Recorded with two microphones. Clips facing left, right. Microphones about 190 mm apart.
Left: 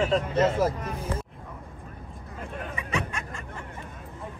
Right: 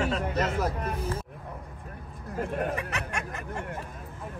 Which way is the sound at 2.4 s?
65° right (ahead or behind).